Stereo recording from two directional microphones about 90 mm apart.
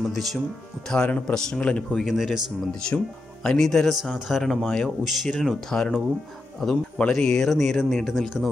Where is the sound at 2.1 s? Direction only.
Centre (ahead or behind).